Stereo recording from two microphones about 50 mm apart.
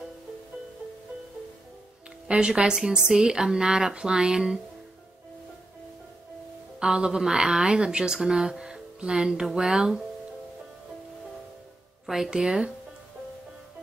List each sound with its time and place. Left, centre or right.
2.2 s speech: centre
6.8 s speech: centre
12.1 s speech: centre